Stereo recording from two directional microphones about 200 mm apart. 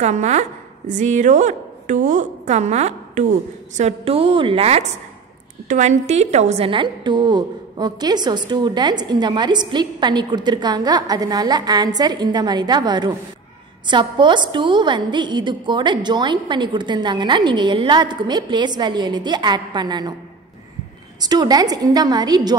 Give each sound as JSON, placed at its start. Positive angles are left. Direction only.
{"t": 0.0, "sound": "a woman's voice", "side_deg": -35}
{"t": 21.2, "sound": "a woman's voice", "side_deg": -20}